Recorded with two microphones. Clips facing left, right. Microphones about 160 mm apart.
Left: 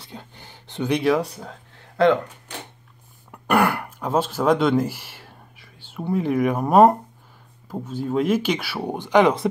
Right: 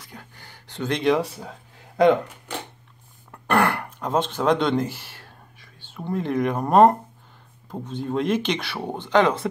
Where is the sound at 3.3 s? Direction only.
10° left (ahead or behind).